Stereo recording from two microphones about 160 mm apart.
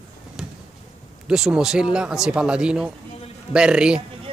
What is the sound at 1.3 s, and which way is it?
Speech, 5° right (ahead or behind).